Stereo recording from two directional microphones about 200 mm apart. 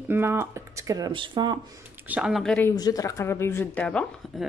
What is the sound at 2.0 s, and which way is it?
Speech, 5° right (ahead or behind).